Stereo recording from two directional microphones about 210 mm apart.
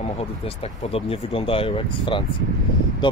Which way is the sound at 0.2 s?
30° left (ahead or behind).